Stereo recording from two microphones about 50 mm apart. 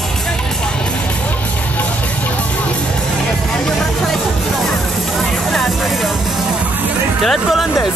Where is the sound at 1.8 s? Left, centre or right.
Left.